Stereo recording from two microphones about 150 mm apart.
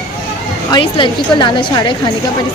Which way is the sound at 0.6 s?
30° left (ahead or behind).